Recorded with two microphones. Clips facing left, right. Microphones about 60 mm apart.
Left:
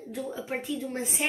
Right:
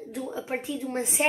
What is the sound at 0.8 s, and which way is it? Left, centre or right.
Speech, right.